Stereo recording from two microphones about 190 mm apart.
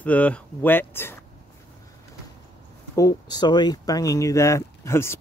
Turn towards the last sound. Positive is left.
turn(degrees=15)  # may be behind; listen again after turning